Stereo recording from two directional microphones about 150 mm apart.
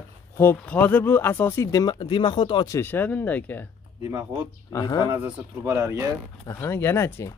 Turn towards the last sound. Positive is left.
turn(degrees=15)  # may be behind; listen again after turning